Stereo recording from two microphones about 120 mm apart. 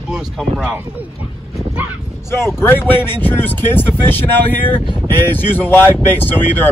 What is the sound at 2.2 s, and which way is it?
Speech, 20° left (ahead or behind).